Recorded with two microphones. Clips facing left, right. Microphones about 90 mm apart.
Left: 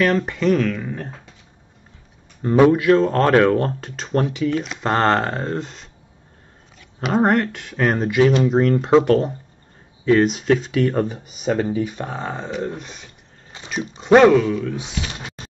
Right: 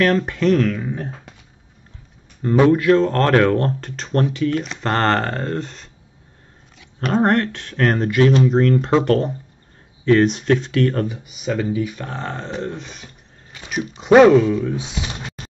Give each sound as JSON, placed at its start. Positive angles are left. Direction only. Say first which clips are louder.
{"t": 0.0, "sound": "speech", "louder": "right 1 dB", "side_deg": 0}
{"t": 2.4, "sound": "speech", "louder": "even", "side_deg": 10}
{"t": 7.0, "sound": "speech", "louder": "even", "side_deg": 5}
{"t": 11.1, "sound": "speech", "louder": "left 2 dB", "side_deg": 40}
{"t": 12.1, "sound": "speech", "louder": "left 1 dB", "side_deg": 5}
{"t": 13.5, "sound": "a sound", "louder": "even", "side_deg": 25}
{"t": 13.9, "sound": "speech", "louder": "right 2 dB", "side_deg": -5}
{"t": 14.6, "sound": "speech", "louder": "right 2 dB", "side_deg": -20}